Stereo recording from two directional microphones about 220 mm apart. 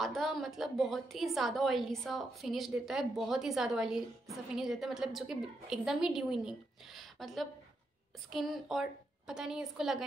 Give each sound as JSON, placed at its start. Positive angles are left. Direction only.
{"t": 0.0, "sound": "a woman's voice", "side_deg": 0}
{"t": 7.0, "sound": "a sound", "side_deg": 0}
{"t": 8.3, "sound": "a woman's voice", "side_deg": 0}